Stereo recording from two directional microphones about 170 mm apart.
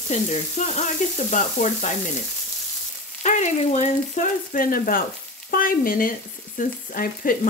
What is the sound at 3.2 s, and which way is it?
Frying, 45° left (ahead or behind).